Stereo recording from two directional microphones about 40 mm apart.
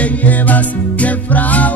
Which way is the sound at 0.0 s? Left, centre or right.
Left.